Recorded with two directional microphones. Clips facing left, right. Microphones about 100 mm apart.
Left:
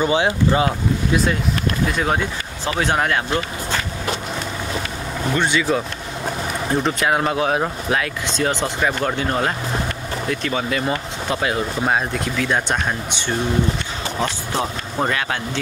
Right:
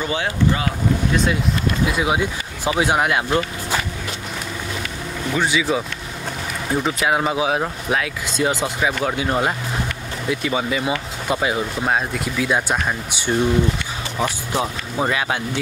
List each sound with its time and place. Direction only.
0.0 s speech: 20° left (ahead or behind)
1.1 s speech: centre (ahead or behind)
5.3 s speech: 5° right (ahead or behind)